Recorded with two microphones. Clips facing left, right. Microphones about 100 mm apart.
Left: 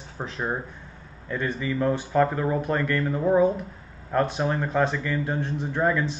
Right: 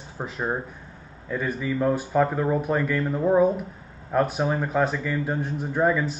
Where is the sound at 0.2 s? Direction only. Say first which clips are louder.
Right 1 dB; 5° right (ahead or behind).